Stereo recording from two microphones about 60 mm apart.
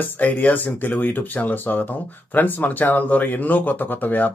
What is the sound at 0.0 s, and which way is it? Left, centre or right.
Speech, left.